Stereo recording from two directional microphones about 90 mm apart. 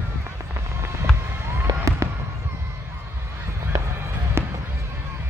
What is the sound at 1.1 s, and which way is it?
Fireworks, 10° left (ahead or behind).